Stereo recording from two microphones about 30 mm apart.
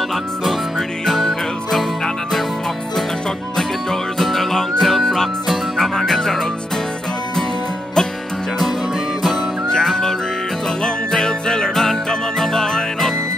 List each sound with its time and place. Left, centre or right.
0.1 s music: centre
3.5 s music: centre
9.7 s music: centre
11.7 s music: centre